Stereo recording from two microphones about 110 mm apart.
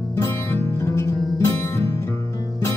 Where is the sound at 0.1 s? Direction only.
20° left (ahead or behind).